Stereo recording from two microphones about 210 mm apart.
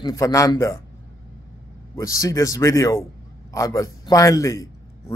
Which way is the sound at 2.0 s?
15° left (ahead or behind).